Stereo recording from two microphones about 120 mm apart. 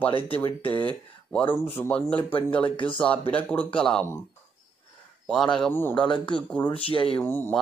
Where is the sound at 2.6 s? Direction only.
45° left (ahead or behind).